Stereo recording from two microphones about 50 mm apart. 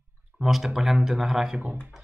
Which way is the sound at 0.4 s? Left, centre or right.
Centre.